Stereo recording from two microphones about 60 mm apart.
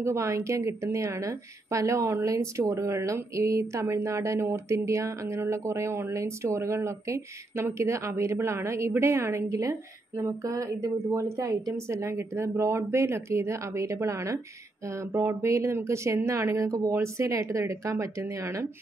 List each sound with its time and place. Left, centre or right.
0.0 s speech: right
16.9 s speech: right